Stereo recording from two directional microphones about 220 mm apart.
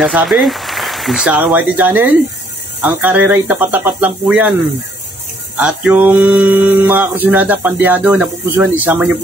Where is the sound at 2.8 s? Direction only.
10° right (ahead or behind).